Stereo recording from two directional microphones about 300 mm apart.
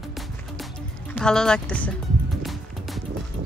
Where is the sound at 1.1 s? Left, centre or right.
Centre.